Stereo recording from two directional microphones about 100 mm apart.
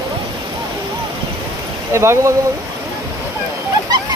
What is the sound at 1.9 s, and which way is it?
Speech, 30° right (ahead or behind).